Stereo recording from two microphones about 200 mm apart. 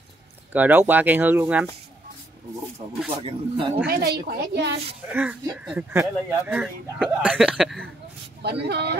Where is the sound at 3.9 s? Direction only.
50° right (ahead or behind).